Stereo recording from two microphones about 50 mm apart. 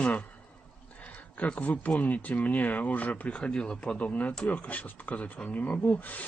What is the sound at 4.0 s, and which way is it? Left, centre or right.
Speech, left.